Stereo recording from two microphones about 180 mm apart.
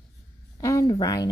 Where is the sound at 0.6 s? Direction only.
20° left (ahead or behind).